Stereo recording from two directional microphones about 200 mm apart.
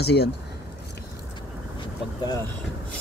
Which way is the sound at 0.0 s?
55° left (ahead or behind).